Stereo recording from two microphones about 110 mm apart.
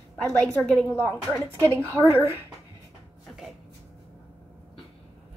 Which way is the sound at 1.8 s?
25° right (ahead or behind).